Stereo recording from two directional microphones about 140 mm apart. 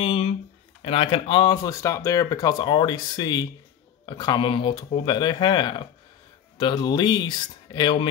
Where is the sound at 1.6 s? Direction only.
25° left (ahead or behind).